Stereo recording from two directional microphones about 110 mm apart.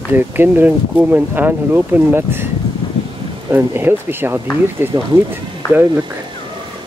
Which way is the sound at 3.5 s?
20° right (ahead or behind).